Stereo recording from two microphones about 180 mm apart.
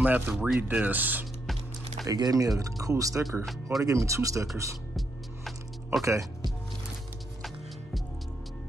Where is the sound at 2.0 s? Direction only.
20° right (ahead or behind).